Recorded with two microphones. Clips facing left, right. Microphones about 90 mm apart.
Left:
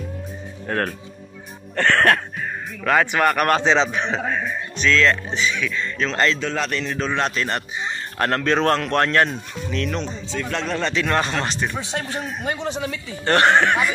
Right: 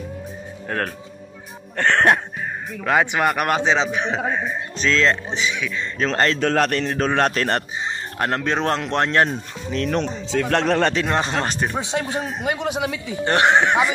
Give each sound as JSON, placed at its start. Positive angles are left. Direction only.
{"t": 0.7, "sound": "speech", "side_deg": 0}
{"t": 1.8, "sound": "a man's voice", "side_deg": -20}
{"t": 4.7, "sound": "speech", "side_deg": -30}
{"t": 5.9, "sound": "a man's voice", "side_deg": -40}
{"t": 8.2, "sound": "speech", "side_deg": -15}
{"t": 9.9, "sound": "speech", "side_deg": -70}
{"t": 11.1, "sound": "speech", "side_deg": -25}
{"t": 11.4, "sound": "speech", "side_deg": -35}
{"t": 11.8, "sound": "a man's voice", "side_deg": -15}